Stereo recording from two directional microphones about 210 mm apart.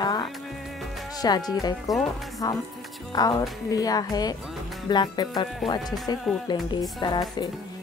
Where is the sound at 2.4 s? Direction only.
20° left (ahead or behind).